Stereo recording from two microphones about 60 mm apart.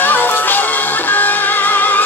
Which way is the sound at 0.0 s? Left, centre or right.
Left.